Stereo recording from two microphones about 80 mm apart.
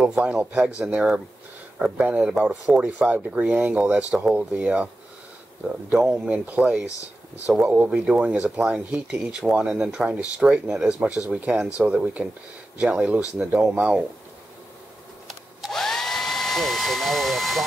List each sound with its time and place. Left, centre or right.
0.0 s speech: centre
5.9 s speech: centre
15.2 s hair dryer: centre